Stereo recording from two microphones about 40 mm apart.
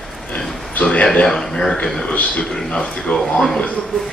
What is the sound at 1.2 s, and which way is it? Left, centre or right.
Speech, centre.